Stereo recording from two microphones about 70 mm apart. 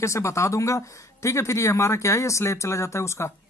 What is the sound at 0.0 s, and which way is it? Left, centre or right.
Speech, left.